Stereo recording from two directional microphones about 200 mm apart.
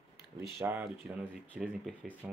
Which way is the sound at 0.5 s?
10° right (ahead or behind).